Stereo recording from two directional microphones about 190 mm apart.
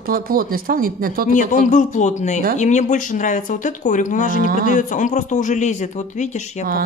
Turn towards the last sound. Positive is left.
turn(degrees=40)  # may be behind; listen again after turning